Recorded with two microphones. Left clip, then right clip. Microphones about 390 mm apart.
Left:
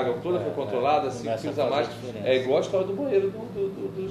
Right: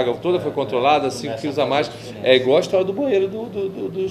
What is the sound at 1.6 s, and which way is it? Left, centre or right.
Speech, right.